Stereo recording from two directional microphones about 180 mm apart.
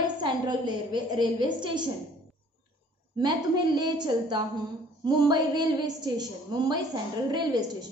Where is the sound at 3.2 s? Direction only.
25° right (ahead or behind).